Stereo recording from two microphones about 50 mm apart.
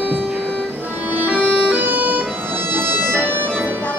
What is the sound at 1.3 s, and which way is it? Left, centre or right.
Music, right.